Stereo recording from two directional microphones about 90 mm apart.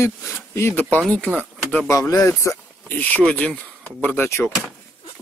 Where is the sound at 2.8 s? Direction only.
20° left (ahead or behind).